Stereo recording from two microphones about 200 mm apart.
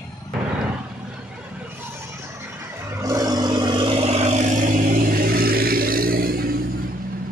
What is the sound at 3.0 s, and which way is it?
Vehicle, 15° right (ahead or behind).